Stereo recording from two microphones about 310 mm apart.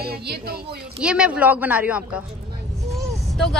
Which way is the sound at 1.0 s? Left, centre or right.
Centre.